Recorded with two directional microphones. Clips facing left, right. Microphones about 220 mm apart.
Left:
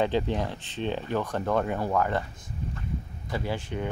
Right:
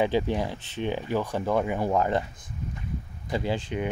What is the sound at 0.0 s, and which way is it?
Speech, 10° right (ahead or behind).